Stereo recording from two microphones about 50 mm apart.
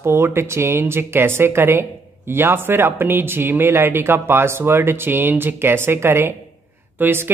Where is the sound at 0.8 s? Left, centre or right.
Right.